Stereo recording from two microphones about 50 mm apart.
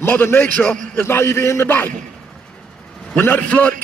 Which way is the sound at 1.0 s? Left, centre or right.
Left.